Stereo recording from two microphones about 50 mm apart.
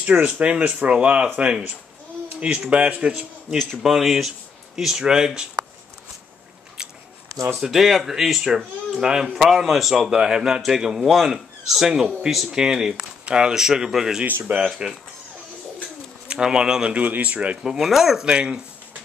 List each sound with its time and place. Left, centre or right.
0.0 s speech: right
3.5 s a man's voice: centre
7.5 s a man's voice: centre
10.0 s a man's voice: centre
14.2 s speech: right
14.8 s a man's voice: centre
16.3 s speech: centre
16.9 s speech: right
17.6 s speech: centre
18.2 s speech: centre